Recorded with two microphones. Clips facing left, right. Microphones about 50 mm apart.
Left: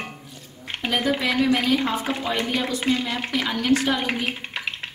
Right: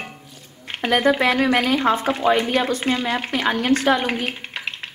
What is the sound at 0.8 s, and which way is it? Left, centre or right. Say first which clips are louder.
A woman's voice: right 6 dB; right.